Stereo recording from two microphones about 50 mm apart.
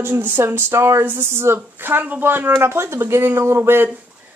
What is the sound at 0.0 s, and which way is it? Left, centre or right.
Speech, right.